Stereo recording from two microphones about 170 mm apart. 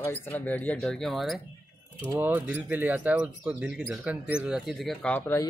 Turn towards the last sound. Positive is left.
turn(degrees=10)  # may be behind; listen again after turning